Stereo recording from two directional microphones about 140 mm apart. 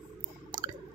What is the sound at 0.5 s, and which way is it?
Squish, 30° right (ahead or behind).